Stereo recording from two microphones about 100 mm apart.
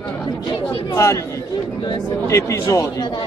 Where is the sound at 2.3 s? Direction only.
30° left (ahead or behind).